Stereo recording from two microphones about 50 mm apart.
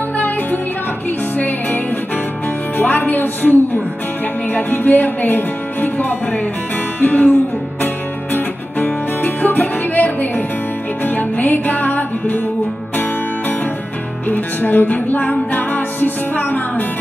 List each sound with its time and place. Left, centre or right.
2.8 s music: left
14.3 s music: left